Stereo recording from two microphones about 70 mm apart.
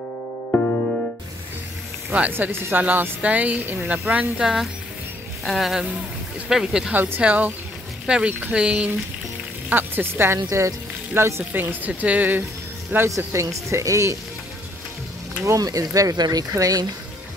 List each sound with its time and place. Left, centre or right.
2.0 s speech: centre
2.3 s speech: right
5.4 s speech: centre
6.9 s speech: right
9.7 s speech: right
11.5 s speech: right
13.1 s speech: right
15.4 s speech: right